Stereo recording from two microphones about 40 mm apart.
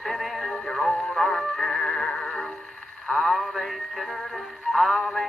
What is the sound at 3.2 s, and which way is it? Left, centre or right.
Music, centre.